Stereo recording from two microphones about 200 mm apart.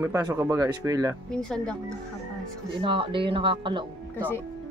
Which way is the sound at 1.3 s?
5° left (ahead or behind).